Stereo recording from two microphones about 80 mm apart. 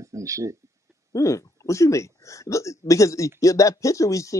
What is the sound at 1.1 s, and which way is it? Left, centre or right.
Speech, left.